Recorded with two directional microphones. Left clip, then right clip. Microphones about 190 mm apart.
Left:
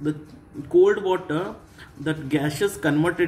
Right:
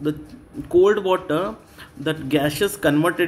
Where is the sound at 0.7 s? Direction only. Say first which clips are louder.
Right 2 dB; 30° right (ahead or behind).